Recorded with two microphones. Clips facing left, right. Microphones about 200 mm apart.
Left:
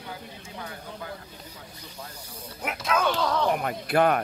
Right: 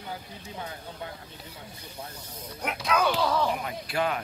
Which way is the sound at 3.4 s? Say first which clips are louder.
Left 4 dB; 55° left (ahead or behind).